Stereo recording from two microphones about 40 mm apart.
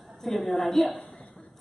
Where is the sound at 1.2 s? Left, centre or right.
Left.